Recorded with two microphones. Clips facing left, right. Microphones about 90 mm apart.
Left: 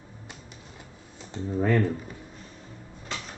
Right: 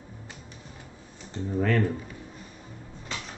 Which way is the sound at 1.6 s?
20° left (ahead or behind).